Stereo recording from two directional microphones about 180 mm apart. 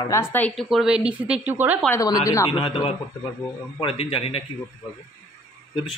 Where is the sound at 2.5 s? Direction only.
30° left (ahead or behind).